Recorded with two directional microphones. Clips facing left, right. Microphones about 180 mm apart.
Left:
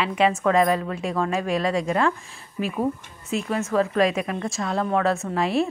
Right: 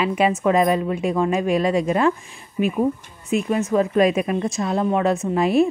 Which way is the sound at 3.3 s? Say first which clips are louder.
Right 5 dB; 15° right (ahead or behind).